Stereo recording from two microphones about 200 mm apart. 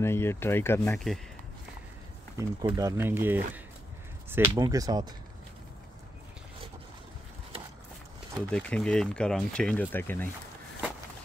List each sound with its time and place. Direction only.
0.0 s speech: 10° left (ahead or behind)
2.3 s speech: 15° right (ahead or behind)
8.5 s speech: 5° left (ahead or behind)